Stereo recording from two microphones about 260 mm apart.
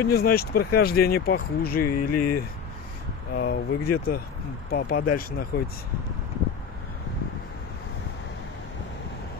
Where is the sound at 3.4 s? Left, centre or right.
Left.